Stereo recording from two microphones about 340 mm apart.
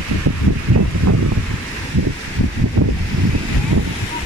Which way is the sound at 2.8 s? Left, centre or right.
Right.